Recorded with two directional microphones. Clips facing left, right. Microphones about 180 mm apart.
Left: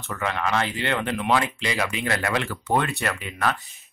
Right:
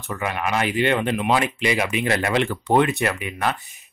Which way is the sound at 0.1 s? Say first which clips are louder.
Right 1 dB; 15° right (ahead or behind).